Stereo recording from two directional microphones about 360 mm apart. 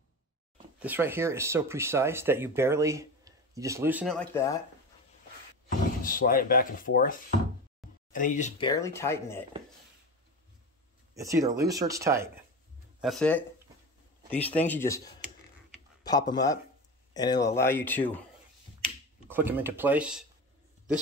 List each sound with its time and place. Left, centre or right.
0.7 s speech: centre
6.0 s speech: left; by 9.4 s centre
11.1 s speech: centre
16.0 s speech: centre
19.1 s speech: centre